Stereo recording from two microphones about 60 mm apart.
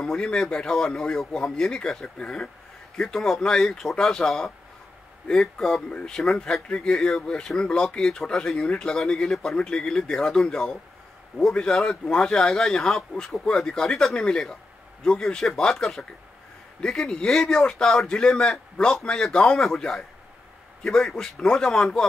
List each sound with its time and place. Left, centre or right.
0.0 s speech: centre
3.0 s speech: centre
6.1 s speech: centre